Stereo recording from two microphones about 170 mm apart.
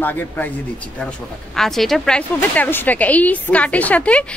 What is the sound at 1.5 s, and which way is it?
Speech, centre (ahead or behind).